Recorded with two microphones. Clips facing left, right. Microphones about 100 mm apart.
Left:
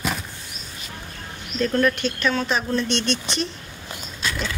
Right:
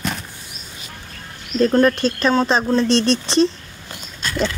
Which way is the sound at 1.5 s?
35° right (ahead or behind).